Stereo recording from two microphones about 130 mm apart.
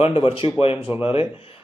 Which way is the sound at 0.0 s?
45° left (ahead or behind).